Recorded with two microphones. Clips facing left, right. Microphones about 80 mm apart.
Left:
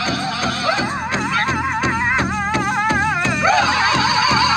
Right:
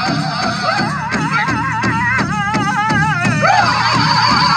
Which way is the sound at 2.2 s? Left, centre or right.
Centre.